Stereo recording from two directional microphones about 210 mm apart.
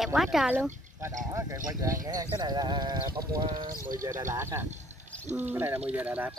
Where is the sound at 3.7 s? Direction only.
40° right (ahead or behind).